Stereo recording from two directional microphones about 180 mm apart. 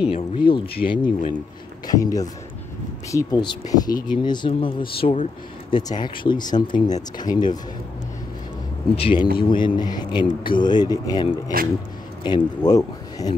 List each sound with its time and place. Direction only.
0.0 s speech: 30° left (ahead or behind)
8.9 s speech: 30° left (ahead or behind)